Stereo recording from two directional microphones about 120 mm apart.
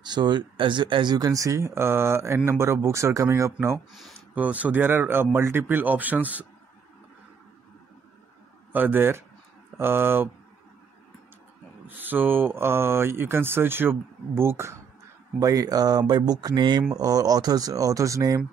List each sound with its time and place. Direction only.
0.0 s speech: 40° right (ahead or behind)
4.4 s speech: 10° right (ahead or behind)
8.7 s speech: 15° right (ahead or behind)
12.0 s speech: 15° right (ahead or behind)